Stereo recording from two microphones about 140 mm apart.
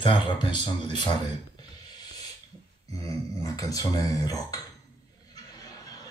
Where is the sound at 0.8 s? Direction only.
35° left (ahead or behind).